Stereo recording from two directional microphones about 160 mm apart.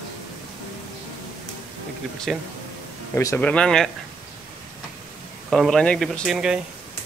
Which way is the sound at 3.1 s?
20° left (ahead or behind).